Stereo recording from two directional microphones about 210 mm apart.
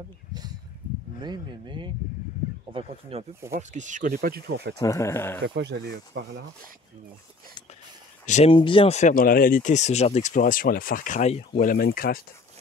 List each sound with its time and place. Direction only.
0.3 s a sound: 20° right (ahead or behind)
1.2 s speech: 20° right (ahead or behind); by 4.7 s 50° right (ahead or behind)
4.7 s speech: 15° left (ahead or behind)
5.4 s speech: 55° right (ahead or behind)
8.3 s speech: 35° left (ahead or behind)